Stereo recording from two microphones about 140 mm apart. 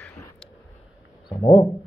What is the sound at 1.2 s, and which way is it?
Speech, 40° left (ahead or behind).